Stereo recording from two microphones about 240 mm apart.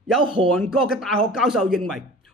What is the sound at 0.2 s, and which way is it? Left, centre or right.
Speech, right.